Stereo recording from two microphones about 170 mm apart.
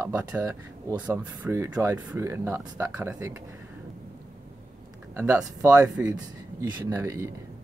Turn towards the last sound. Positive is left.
turn(degrees=-15)  # may be behind; listen again after turning